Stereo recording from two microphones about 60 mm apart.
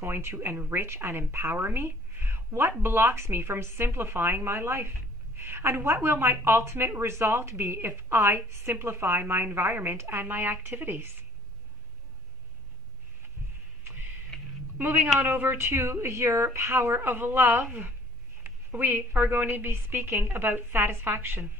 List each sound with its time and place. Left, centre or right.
0.0 s a woman's voice: right
14.3 s a sound: centre
14.8 s speech: right